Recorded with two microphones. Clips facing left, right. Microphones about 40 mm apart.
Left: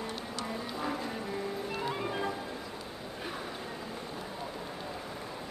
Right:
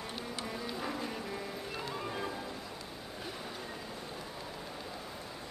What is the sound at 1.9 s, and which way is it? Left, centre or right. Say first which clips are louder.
Music: left 4 dB; left.